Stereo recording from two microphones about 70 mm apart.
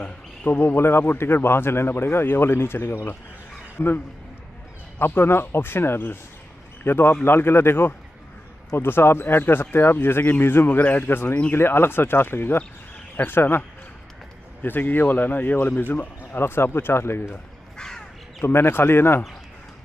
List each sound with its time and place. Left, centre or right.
0.0 s a man's voice: left
17.7 s crow: centre
18.4 s a man's voice: left